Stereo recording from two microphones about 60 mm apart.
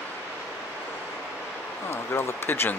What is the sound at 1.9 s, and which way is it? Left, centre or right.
Speech, left.